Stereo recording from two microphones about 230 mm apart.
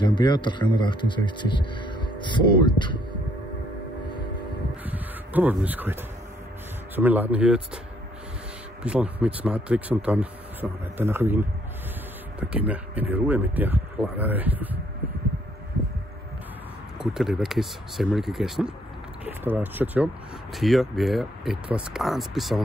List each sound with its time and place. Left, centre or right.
0.0 s speech: centre
4.8 s speech: centre
7.0 s speech: centre
8.8 s speech: centre
17.0 s speech: centre